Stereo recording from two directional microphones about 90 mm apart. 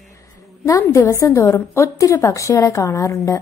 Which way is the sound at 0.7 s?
30° left (ahead or behind).